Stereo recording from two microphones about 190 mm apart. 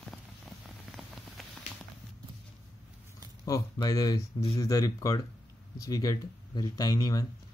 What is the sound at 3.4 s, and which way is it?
Speech, 15° left (ahead or behind).